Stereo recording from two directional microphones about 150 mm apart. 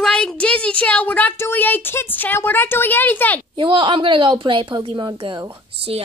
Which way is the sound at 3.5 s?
35° right (ahead or behind).